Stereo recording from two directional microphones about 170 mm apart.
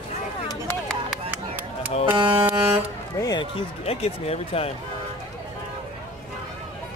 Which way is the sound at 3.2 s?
25° left (ahead or behind).